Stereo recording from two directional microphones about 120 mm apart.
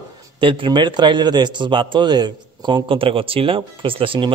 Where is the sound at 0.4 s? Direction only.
45° right (ahead or behind).